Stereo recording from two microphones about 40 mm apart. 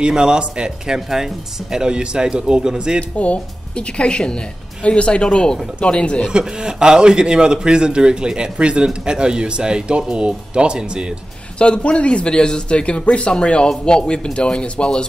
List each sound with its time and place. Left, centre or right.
0.0 s a man's voice: right
0.7 s speech: centre
3.0 s a man's voice: left
6.3 s a man's voice: right
11.5 s a man's voice: left